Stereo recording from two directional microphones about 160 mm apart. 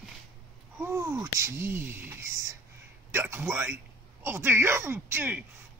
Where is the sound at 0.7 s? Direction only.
15° right (ahead or behind).